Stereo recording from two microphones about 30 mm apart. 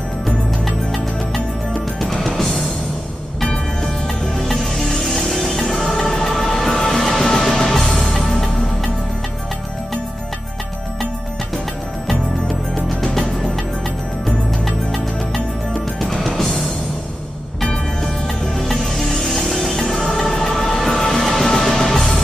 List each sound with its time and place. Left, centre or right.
1.3 s music: centre
4.5 s music: centre
12.8 s music: centre
16.0 s music: centre
18.0 s music: centre